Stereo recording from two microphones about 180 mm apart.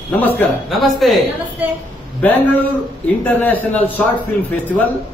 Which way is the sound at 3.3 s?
10° left (ahead or behind).